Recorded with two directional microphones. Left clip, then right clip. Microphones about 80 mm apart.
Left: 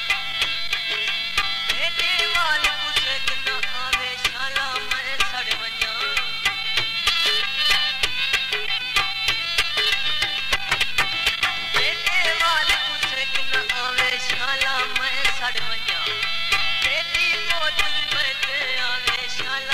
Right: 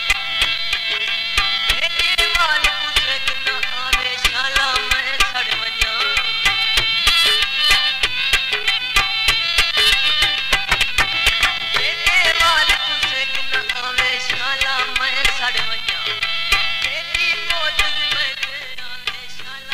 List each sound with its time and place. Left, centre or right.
1.3 s music: right
2.4 s music: right
5.8 s music: right
6.4 s music: right
9.6 s music: centre
14.6 s music: right
16.4 s music: right
17.2 s music: centre